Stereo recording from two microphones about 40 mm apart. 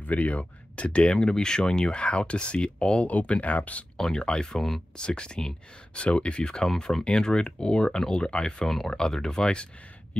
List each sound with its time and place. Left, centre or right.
0.0 s speech: left
1.1 s speech: centre; by 3.8 s left
3.9 s speech: centre
4.9 s speech: left
8.6 s speech: centre